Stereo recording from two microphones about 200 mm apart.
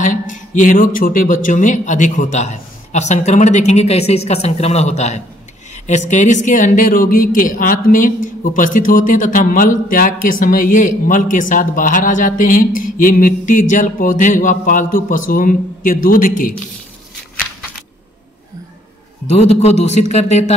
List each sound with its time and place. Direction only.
0.0 s speech: 40° left (ahead or behind)
19.2 s speech: 30° left (ahead or behind)